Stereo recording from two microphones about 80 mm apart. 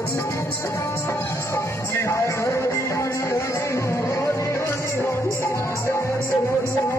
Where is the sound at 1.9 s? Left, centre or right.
Left.